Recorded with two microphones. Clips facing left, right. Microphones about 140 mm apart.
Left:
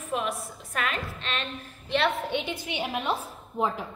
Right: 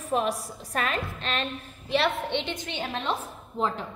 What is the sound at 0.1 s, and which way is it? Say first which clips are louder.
A woman's voice: right 4 dB; 35° right (ahead or behind).